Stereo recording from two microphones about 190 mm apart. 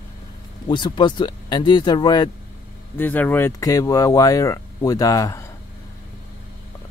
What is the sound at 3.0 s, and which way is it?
Speech, 10° left (ahead or behind).